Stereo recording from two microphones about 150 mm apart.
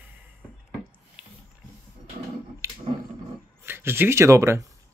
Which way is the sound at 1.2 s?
5° right (ahead or behind).